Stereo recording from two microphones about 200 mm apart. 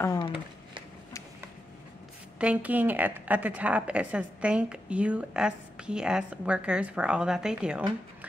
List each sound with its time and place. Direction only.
0.0 s speech: 15° left (ahead or behind)
2.3 s a woman's voice: 5° right (ahead or behind)